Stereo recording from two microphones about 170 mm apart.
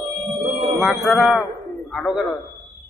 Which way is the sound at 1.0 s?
Centre (ahead or behind).